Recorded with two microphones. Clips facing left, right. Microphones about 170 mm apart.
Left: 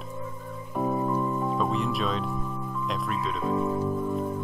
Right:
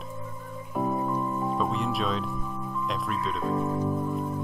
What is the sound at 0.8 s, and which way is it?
Music, centre (ahead or behind).